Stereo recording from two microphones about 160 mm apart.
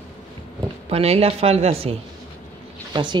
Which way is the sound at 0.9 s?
40° right (ahead or behind).